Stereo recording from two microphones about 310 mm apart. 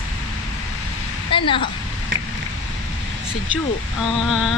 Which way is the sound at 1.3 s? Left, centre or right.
Centre.